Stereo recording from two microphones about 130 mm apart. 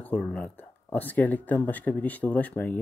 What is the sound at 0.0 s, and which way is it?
Speech, 10° left (ahead or behind).